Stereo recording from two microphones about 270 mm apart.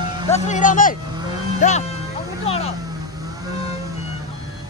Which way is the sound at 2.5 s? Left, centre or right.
Left.